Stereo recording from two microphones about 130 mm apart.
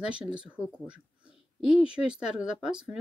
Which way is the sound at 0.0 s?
5° right (ahead or behind).